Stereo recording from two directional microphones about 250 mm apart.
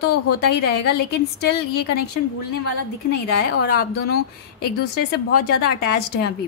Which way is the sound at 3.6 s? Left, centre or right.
Left.